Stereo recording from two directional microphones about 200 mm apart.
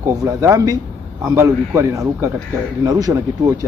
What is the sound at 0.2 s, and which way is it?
Speech, 15° right (ahead or behind).